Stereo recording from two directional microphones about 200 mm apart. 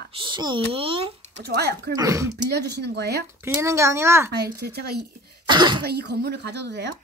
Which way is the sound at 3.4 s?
15° right (ahead or behind).